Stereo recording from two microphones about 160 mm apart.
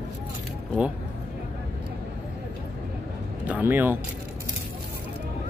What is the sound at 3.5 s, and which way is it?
Speech, 10° right (ahead or behind).